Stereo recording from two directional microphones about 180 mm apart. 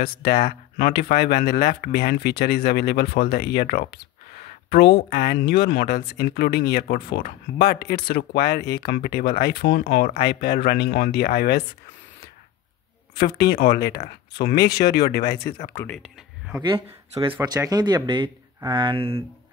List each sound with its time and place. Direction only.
0.0 s speech: 55° left (ahead or behind)
13.2 s speech: 60° left (ahead or behind)
15.7 s speech: 10° left (ahead or behind)
17.1 s speech: 30° right (ahead or behind)